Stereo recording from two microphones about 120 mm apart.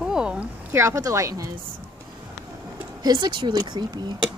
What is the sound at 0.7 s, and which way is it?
Speech, 25° right (ahead or behind).